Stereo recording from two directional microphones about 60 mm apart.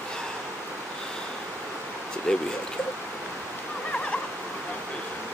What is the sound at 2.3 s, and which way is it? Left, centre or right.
Speech, centre.